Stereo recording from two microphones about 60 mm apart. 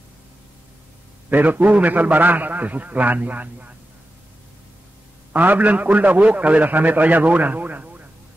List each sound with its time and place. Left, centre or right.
1.3 s a man's voice: right
5.3 s a man's voice: right